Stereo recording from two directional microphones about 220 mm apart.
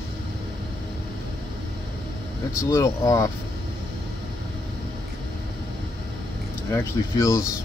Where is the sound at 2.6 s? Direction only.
15° left (ahead or behind).